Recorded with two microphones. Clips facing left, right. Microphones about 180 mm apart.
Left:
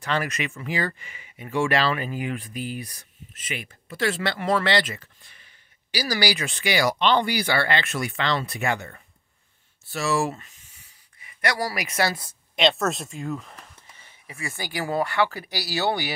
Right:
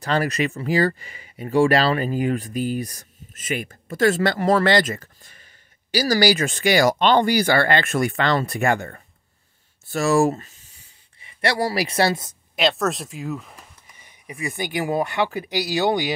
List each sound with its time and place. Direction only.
0.0 s speech: 35° right (ahead or behind)
12.5 s speech: centre (ahead or behind)
13.9 s speech: 15° right (ahead or behind)